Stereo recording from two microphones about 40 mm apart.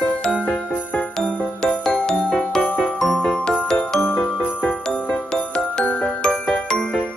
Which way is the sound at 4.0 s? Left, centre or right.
Left.